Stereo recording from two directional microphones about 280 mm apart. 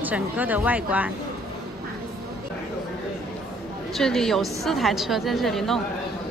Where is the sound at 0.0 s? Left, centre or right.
Centre.